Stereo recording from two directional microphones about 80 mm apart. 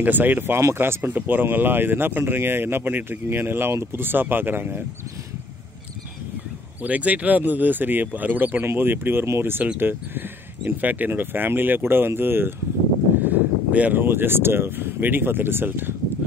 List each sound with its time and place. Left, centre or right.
0.0 s speech: right
6.8 s speech: centre